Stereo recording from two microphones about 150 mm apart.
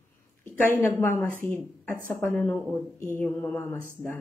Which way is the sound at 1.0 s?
15° left (ahead or behind).